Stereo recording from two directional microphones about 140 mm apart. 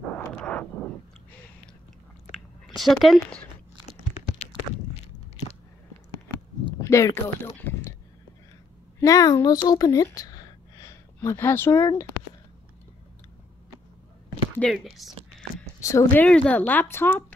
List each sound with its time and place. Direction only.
0.0 s a sound: 10° left (ahead or behind)
2.3 s a sound: centre (ahead or behind)
6.8 s speech: 20° left (ahead or behind)
9.0 s speech: 25° left (ahead or behind)
10.1 s gasp: 25° left (ahead or behind)
11.1 s speech: 15° left (ahead or behind)
14.6 s speech: centre (ahead or behind)
15.8 s speech: 20° left (ahead or behind)